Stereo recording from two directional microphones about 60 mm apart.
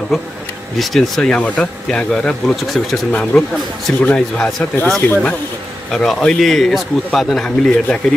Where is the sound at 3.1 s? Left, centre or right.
Left.